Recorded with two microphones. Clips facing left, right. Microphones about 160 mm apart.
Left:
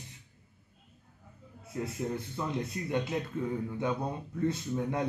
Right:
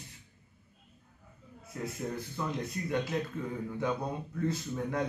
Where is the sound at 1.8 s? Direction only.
25° left (ahead or behind).